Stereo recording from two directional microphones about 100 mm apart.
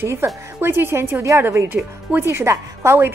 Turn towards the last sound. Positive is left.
turn(degrees=-25)  # may be behind; listen again after turning